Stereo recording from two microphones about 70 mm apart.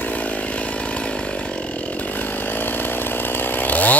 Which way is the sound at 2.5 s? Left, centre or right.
Left.